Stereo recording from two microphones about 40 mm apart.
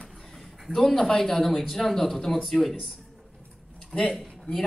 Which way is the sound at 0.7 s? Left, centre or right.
Centre.